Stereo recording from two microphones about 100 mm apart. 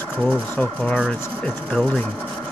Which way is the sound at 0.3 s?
15° left (ahead or behind).